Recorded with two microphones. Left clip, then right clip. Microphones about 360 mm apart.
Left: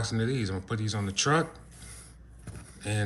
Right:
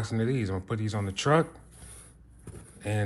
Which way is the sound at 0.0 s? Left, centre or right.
Centre.